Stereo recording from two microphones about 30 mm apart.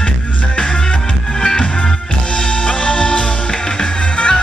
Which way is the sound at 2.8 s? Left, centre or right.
Left.